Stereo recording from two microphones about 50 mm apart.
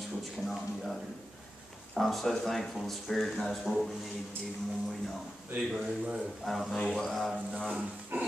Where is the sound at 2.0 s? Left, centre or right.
Centre.